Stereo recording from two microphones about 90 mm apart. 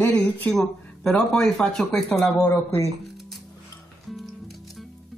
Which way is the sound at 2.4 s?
30° left (ahead or behind).